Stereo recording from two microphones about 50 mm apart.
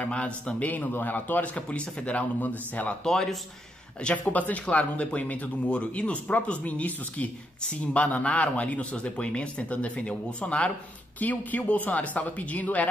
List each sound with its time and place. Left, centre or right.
0.0 s a man's voice: left
3.0 s a man's voice: centre
4.1 s speech: left
11.1 s a man's voice: left